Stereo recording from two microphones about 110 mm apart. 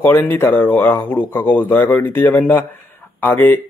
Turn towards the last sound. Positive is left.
turn(degrees=15)  # may be behind; listen again after turning